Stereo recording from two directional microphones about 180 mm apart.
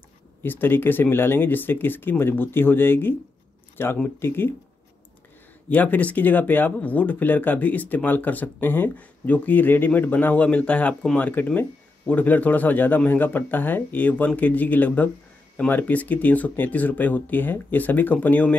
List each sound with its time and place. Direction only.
0.4 s speech: 10° left (ahead or behind)
5.7 s speech: 10° left (ahead or behind)